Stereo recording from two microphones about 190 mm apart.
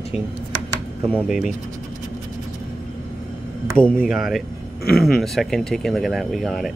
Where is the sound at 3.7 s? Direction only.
5° left (ahead or behind).